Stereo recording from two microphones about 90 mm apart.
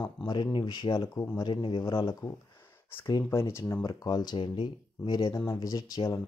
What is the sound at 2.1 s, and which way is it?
Speech, 35° left (ahead or behind).